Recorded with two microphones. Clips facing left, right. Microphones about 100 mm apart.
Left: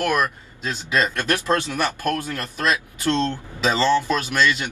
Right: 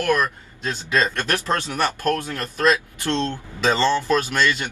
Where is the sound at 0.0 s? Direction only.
15° left (ahead or behind).